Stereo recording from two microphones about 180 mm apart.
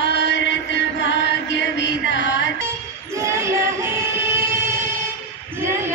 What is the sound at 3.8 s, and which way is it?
Music, 15° right (ahead or behind).